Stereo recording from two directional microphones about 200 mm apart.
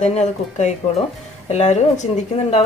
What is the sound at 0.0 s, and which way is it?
A woman's voice, 35° left (ahead or behind).